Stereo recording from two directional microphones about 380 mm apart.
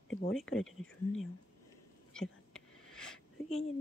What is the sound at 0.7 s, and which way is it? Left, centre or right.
Speech, centre.